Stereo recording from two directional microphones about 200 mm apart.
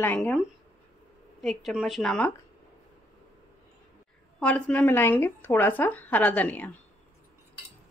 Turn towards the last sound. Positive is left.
turn(degrees=10)  # may be behind; listen again after turning